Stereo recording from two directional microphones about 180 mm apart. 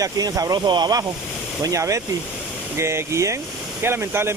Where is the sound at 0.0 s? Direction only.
20° right (ahead or behind).